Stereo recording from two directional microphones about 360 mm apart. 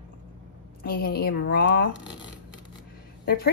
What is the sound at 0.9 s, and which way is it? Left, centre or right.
Speech, left.